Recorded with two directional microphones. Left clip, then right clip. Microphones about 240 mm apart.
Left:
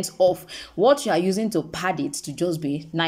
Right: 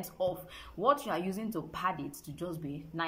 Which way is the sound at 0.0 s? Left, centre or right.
Left.